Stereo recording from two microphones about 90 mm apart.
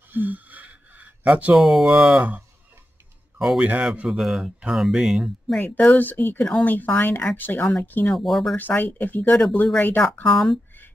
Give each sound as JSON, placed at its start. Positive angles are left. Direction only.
{"t": 0.1, "sound": "a sound", "side_deg": -20}
{"t": 1.5, "sound": "speech", "side_deg": 0}
{"t": 3.3, "sound": "a man's voice", "side_deg": -5}
{"t": 5.9, "sound": "speech", "side_deg": 20}
{"t": 8.1, "sound": "speech", "side_deg": 0}
{"t": 8.5, "sound": "speech", "side_deg": 20}
{"t": 10.2, "sound": "speech", "side_deg": 5}